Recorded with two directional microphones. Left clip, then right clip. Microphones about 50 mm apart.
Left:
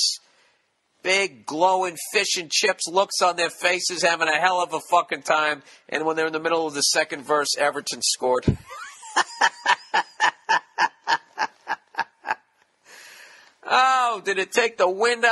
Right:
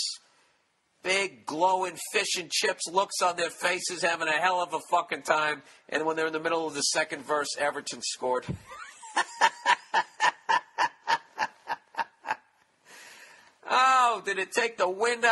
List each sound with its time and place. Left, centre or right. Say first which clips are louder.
1.0 s speech: left 6 dB; left
8.4 s snicker: left 8 dB; left
13.7 s a man's voice: left 3 dB; left